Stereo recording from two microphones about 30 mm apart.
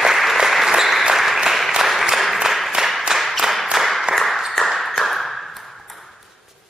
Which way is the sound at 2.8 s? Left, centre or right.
Centre.